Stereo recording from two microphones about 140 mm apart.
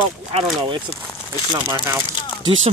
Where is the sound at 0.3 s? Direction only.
40° right (ahead or behind).